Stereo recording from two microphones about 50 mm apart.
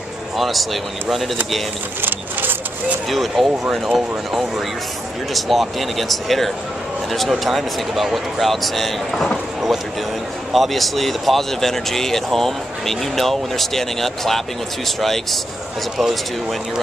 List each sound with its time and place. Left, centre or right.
0.4 s speech: centre
2.0 s speech: right
3.1 s speech: centre